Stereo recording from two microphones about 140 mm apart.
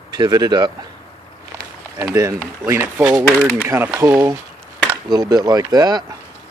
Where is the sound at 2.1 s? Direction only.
20° right (ahead or behind).